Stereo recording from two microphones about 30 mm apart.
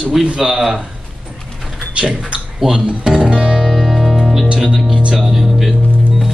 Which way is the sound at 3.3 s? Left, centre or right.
Right.